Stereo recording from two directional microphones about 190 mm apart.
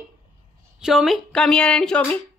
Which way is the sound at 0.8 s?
Centre (ahead or behind).